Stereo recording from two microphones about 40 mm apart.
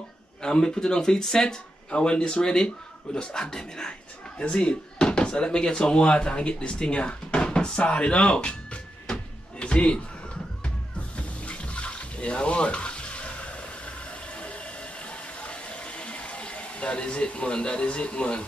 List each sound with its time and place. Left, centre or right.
0.4 s speech: left
1.9 s speech: left
9.0 s a sound: left
11.1 s water: left